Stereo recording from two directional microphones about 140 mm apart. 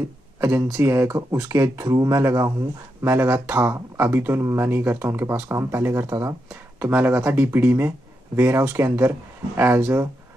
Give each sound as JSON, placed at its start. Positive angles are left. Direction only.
{"t": 0.4, "sound": "speech", "side_deg": -20}